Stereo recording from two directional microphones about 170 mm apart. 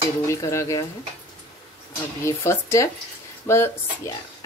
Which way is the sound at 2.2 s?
15° left (ahead or behind).